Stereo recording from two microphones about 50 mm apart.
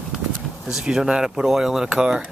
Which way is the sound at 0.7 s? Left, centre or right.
Centre.